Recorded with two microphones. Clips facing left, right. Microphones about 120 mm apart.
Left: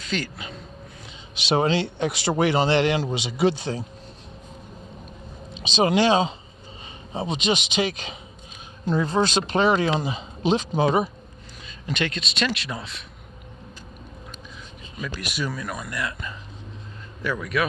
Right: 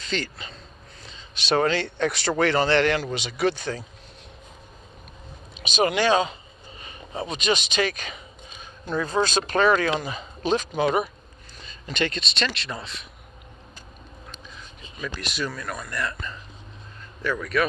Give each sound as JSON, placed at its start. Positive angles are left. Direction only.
{"t": 0.0, "sound": "a man's voice", "side_deg": 5}
{"t": 1.3, "sound": "speech", "side_deg": 15}
{"t": 5.5, "sound": "speech", "side_deg": 25}
{"t": 11.6, "sound": "a man's voice", "side_deg": 5}
{"t": 15.0, "sound": "speech", "side_deg": 10}